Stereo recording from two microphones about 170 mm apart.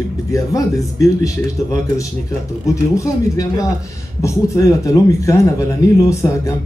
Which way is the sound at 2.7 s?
20° left (ahead or behind).